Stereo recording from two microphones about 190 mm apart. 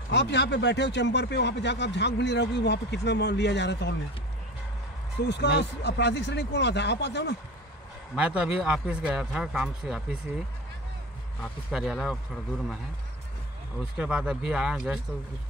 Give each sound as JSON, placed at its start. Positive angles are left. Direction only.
{"t": 0.1, "sound": "speech", "side_deg": 65}
{"t": 5.3, "sound": "speech", "side_deg": 65}
{"t": 8.1, "sound": "a man's voice", "side_deg": -5}
{"t": 11.4, "sound": "a man's voice", "side_deg": 0}
{"t": 13.9, "sound": "a man's voice", "side_deg": -5}